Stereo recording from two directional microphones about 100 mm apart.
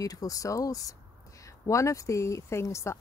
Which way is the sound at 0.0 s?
35° left (ahead or behind).